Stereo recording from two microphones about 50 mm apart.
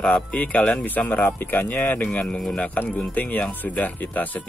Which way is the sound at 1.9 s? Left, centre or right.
Left.